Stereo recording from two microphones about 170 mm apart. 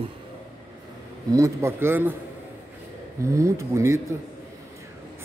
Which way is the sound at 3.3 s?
15° right (ahead or behind).